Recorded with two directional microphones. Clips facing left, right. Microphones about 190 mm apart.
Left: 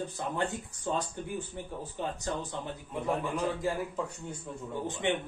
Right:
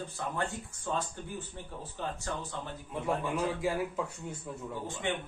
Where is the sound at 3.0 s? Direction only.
10° right (ahead or behind).